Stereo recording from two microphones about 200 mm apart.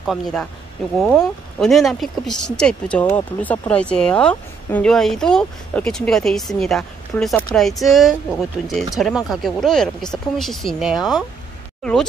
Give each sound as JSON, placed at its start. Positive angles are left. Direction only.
{"t": 0.0, "sound": "speech", "side_deg": 0}